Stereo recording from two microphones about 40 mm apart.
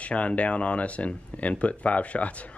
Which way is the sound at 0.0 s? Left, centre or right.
Left.